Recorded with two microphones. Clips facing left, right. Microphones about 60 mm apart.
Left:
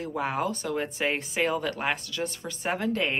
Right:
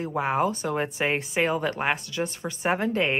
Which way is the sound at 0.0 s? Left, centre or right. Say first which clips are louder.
Right 4 dB; centre.